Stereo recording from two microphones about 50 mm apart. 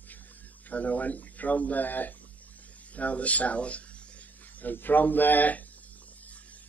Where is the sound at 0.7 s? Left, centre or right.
Left.